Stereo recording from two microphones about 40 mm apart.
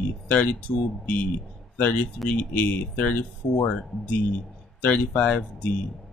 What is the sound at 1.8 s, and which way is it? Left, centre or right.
Speech, left.